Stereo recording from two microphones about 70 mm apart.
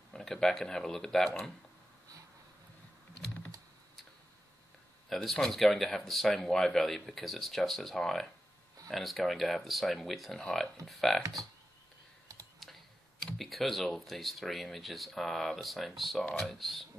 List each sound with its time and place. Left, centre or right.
0.1 s speech: centre
5.1 s speech: centre
13.2 s speech: centre